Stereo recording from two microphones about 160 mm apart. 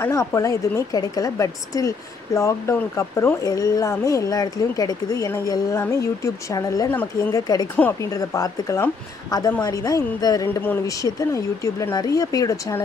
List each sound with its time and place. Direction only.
0.0 s a woman's voice: 20° left (ahead or behind)
7.7 s speech: 10° left (ahead or behind)
8.1 s a woman's voice: 20° left (ahead or behind)